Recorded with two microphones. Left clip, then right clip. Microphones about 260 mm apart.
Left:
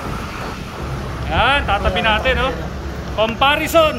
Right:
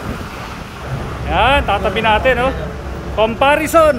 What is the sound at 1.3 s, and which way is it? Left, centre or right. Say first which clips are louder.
Speech: right 3 dB; centre.